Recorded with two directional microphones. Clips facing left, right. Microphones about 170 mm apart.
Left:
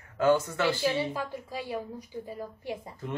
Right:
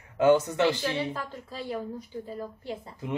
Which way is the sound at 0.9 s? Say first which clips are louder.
Left 2 dB; 10° left (ahead or behind).